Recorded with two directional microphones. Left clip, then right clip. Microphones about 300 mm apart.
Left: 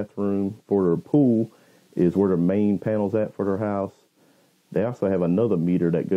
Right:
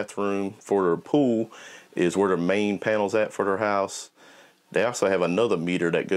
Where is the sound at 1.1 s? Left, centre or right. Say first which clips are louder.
Left 2 dB; right.